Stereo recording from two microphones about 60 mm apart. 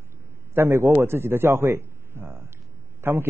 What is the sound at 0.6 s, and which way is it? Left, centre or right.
A man's voice, right.